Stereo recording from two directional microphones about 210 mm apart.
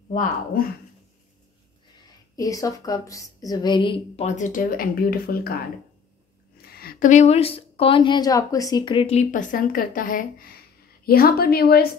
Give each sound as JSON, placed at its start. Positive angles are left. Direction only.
{"t": 0.1, "sound": "a woman's voice", "side_deg": 40}
{"t": 2.3, "sound": "a woman's voice", "side_deg": 15}
{"t": 6.6, "sound": "a woman's voice", "side_deg": 45}